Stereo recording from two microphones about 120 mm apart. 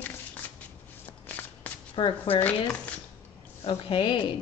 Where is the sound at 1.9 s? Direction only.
50° left (ahead or behind).